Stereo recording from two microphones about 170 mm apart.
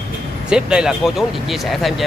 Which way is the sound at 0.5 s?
5° right (ahead or behind).